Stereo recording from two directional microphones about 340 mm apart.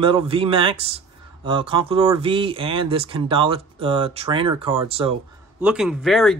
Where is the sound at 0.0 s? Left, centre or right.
Centre.